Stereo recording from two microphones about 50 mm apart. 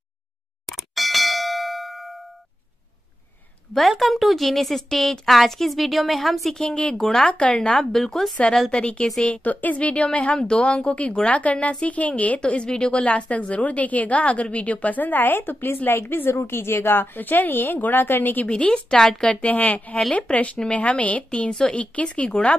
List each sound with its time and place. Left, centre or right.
0.7 s bell: centre
4.0 s a woman's voice: centre
6.6 s speech: centre
8.7 s a woman's voice: left
12.4 s speech: centre
13.0 s a woman's voice: left
18.4 s a woman's voice: left
19.4 s a woman's voice: left